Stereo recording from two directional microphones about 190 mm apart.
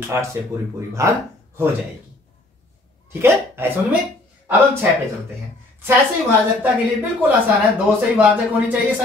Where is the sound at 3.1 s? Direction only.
15° right (ahead or behind).